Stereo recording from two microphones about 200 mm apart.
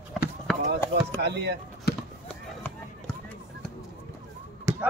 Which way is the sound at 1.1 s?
55° right (ahead or behind).